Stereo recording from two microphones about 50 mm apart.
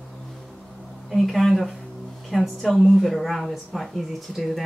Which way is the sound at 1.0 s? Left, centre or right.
Centre.